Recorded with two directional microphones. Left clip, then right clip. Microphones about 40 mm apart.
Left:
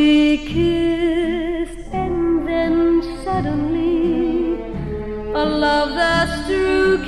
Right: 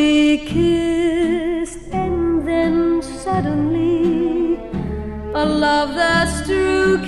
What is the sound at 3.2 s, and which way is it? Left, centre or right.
Music, centre.